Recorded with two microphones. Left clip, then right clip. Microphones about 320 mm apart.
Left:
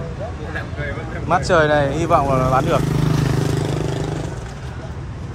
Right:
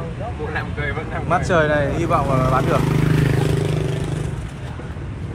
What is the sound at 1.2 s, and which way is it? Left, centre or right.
Speech, centre.